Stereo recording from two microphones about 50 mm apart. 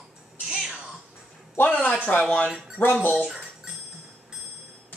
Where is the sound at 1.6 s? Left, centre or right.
Left.